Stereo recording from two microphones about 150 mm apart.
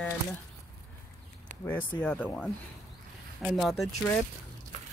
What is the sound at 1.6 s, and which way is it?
Speech, 15° left (ahead or behind).